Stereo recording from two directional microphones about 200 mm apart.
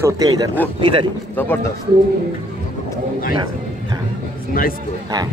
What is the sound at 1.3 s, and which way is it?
Speech, 10° left (ahead or behind).